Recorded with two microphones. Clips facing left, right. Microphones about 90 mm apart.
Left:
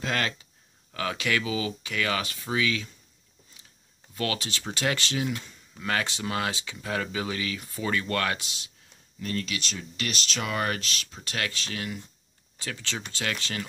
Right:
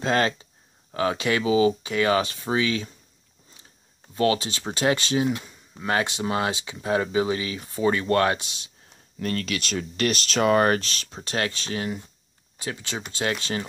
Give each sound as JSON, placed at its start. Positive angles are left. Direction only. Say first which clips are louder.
{"t": 0.0, "sound": "speech", "louder": "right 7 dB", "side_deg": -30}
{"t": 4.1, "sound": "speech", "louder": "right 8 dB", "side_deg": -30}
{"t": 9.2, "sound": "speech", "louder": "right 4 dB", "side_deg": -60}
{"t": 12.5, "sound": "speech", "louder": "right 3 dB", "side_deg": -20}